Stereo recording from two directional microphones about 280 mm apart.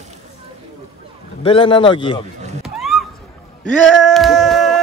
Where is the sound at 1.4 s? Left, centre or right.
Centre.